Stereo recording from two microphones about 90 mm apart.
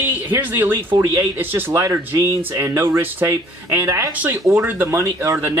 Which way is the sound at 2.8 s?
25° right (ahead or behind).